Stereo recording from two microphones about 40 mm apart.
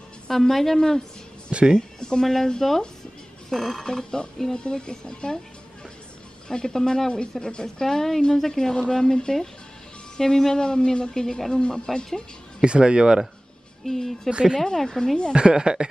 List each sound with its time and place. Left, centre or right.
0.3 s a woman's voice: centre
1.5 s speech: right
1.8 s speech: centre
2.2 s speech: centre
3.8 s a woman's voice: centre
6.5 s a woman's voice: centre
12.6 s speech: right
13.8 s a woman's voice: centre
14.3 s speech: centre
14.6 s a woman's voice: centre
15.3 s speech: right